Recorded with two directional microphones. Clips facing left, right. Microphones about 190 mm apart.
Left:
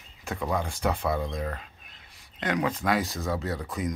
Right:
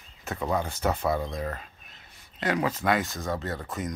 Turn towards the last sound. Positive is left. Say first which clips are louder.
# left 1 dB
turn(degrees=0)  # may be behind; listen again after turning